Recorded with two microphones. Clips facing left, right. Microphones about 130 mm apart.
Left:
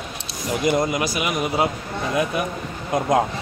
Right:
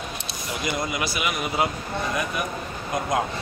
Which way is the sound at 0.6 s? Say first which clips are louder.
Left 7 dB; 45° left (ahead or behind).